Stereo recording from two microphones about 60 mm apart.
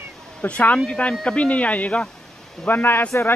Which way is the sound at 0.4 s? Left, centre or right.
Left.